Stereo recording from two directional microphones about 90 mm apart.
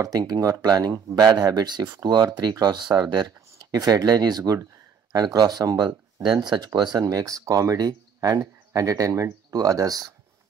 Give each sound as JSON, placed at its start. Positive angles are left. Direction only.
{"t": 0.0, "sound": "speech", "side_deg": -45}
{"t": 7.0, "sound": "speech", "side_deg": -40}